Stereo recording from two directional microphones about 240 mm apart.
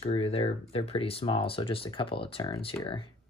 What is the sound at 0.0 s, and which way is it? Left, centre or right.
Speech, left.